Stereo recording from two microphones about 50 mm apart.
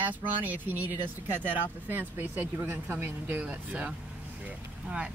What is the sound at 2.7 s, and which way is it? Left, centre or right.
Speech, right.